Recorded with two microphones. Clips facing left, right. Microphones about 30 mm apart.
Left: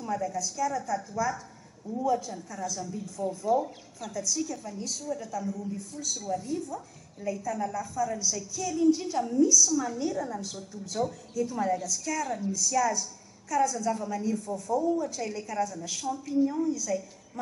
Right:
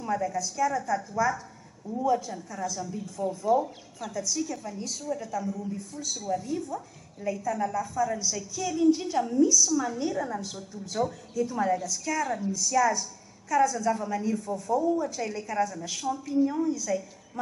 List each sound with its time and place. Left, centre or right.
0.0 s speech: centre
16.4 s a woman's voice: right
16.7 s speech: centre